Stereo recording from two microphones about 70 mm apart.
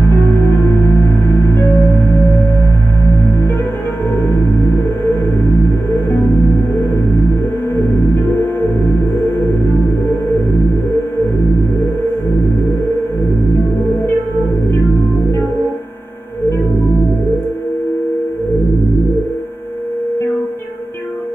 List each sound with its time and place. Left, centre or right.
0.0 s music: left